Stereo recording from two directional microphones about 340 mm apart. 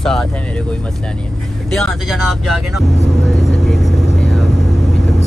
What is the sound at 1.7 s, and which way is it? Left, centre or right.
Speech, centre.